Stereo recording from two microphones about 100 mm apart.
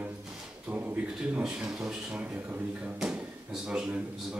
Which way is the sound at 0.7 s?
15° right (ahead or behind).